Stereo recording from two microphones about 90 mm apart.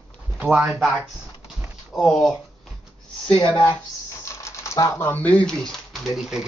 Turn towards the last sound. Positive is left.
turn(degrees=-5)  # may be behind; listen again after turning